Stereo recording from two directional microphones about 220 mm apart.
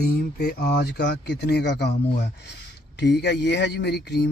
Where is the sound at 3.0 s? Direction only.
50° left (ahead or behind).